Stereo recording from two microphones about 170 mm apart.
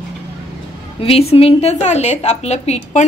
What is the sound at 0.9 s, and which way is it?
A woman's voice, 35° left (ahead or behind).